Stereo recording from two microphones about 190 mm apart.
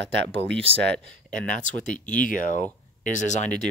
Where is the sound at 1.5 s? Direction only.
40° left (ahead or behind).